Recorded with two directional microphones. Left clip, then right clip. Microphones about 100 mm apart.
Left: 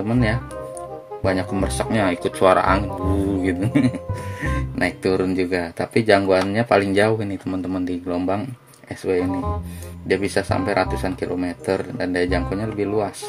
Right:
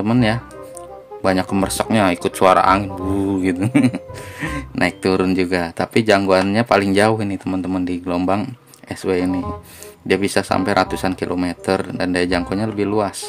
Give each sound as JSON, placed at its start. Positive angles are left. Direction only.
{"t": 0.0, "sound": "speech", "side_deg": -55}